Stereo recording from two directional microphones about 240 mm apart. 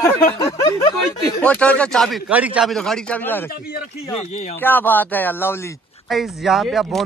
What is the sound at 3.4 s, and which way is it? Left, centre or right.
Speech, left.